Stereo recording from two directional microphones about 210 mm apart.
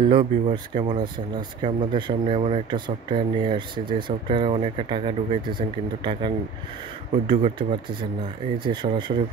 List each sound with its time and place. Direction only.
0.0 s speech: 25° right (ahead or behind)